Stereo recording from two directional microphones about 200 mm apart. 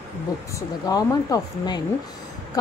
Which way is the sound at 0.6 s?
20° left (ahead or behind).